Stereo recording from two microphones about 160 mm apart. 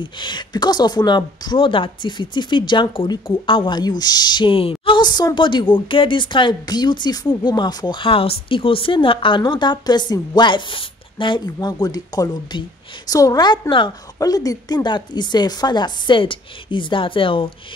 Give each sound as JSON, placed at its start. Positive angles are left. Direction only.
{"t": 0.0, "sound": "a woman's voice", "side_deg": 30}